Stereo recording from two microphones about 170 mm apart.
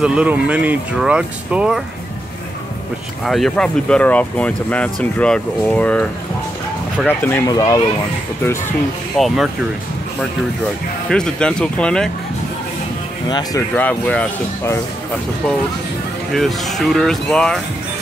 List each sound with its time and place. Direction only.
0.0 s speech: 5° right (ahead or behind)
3.3 s speech: centre (ahead or behind)
7.1 s speech: 15° left (ahead or behind)
9.1 s speech: centre (ahead or behind)
11.1 s speech: 5° left (ahead or behind)
13.3 s speech: 20° left (ahead or behind)
13.7 s speech: 10° left (ahead or behind)
16.3 s speech: centre (ahead or behind)